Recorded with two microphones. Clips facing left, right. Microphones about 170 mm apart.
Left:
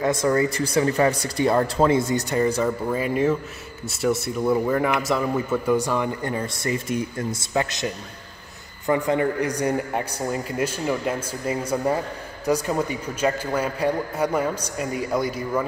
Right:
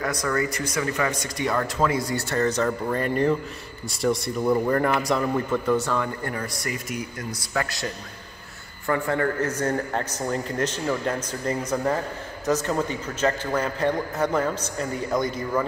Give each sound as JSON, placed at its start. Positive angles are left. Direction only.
{"t": 0.0, "sound": "speech", "side_deg": 25}